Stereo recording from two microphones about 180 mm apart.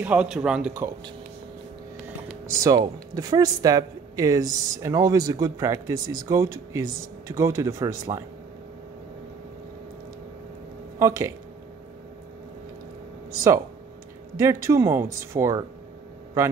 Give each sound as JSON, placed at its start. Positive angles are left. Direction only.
{"t": 0.0, "sound": "speech", "side_deg": -5}
{"t": 2.6, "sound": "speech", "side_deg": -20}
{"t": 11.0, "sound": "speech", "side_deg": -15}
{"t": 14.3, "sound": "speech", "side_deg": -15}